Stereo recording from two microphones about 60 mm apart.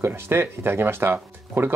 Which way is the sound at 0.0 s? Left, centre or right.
Right.